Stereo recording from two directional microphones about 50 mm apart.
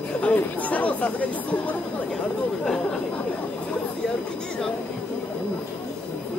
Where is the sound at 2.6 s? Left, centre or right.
Centre.